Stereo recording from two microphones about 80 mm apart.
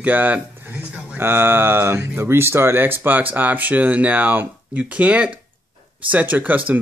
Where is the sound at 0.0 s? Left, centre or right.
Right.